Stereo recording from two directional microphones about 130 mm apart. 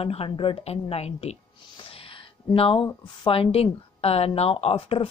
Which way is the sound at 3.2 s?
45° left (ahead or behind).